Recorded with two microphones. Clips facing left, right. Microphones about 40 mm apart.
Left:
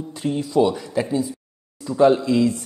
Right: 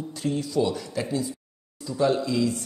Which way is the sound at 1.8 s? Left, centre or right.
Left.